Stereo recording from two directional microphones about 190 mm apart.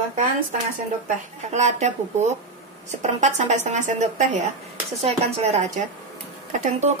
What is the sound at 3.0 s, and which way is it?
Speech, 40° right (ahead or behind).